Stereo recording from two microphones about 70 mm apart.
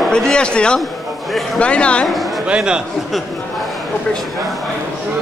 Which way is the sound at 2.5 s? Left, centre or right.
Centre.